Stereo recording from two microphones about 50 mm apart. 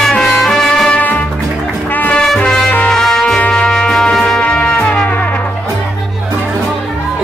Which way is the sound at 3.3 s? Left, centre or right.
Centre.